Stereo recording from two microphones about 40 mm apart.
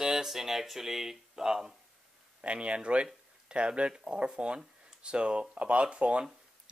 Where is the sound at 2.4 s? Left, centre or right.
Right.